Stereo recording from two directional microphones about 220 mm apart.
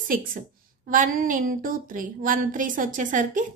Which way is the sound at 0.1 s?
40° right (ahead or behind).